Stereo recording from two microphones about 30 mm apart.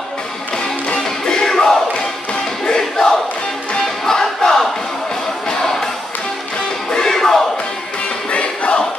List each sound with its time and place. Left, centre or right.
1.2 s music: left
2.6 s crowd: left
4.0 s battle cry: left
5.5 s crowd: centre
6.9 s music: left
8.3 s music: left